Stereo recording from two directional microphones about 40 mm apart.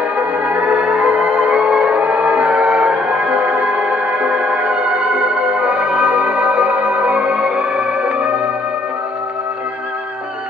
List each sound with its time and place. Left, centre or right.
0.1 s music: right